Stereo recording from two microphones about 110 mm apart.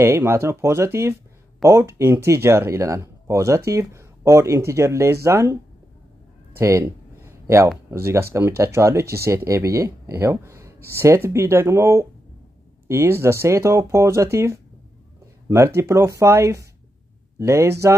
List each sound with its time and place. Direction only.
0.0 s speech: 20° right (ahead or behind)
6.6 s a sound: 25° right (ahead or behind)
8.0 s speech: 25° right (ahead or behind)